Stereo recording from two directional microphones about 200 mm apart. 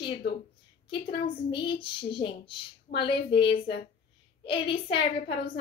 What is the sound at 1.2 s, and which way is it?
A woman's voice, 25° left (ahead or behind).